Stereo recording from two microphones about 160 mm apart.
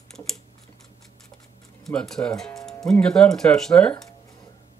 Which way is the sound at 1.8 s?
5° left (ahead or behind).